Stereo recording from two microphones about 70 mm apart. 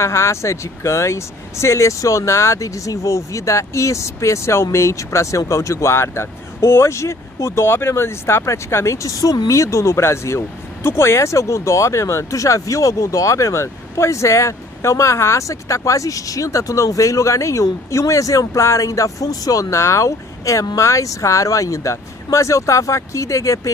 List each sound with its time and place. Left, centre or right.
0.0 s speech: left